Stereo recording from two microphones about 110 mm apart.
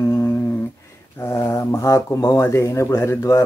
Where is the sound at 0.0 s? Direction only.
20° left (ahead or behind).